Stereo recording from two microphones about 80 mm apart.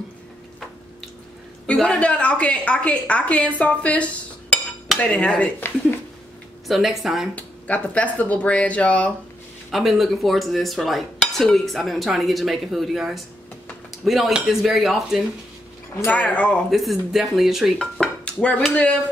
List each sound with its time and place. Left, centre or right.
1.7 s a woman's voice: centre
6.7 s cutlery: centre
7.3 s a woman's voice: centre
9.7 s cutlery: centre
16.1 s a woman's voice: centre
16.7 s cutlery: centre
18.0 s dishes: centre
18.7 s a woman's voice: centre